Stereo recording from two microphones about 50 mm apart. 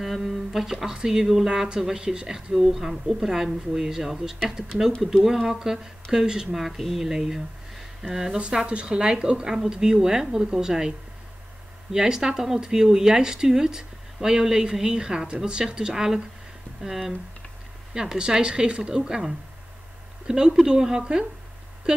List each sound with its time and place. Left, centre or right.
0.0 s speech: centre
8.4 s speech: right
11.9 s speech: centre